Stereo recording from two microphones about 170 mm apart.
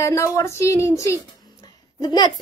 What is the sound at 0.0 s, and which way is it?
A woman's voice, 15° left (ahead or behind).